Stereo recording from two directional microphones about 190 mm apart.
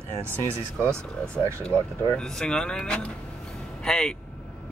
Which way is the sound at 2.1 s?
5° left (ahead or behind).